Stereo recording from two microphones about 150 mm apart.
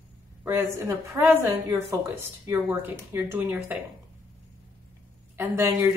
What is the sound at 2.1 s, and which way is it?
A woman's voice, 15° right (ahead or behind).